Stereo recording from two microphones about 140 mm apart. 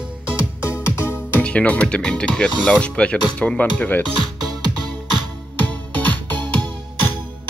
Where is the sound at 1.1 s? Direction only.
10° left (ahead or behind).